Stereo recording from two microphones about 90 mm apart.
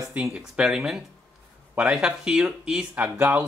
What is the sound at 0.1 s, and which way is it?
Speech, 10° right (ahead or behind).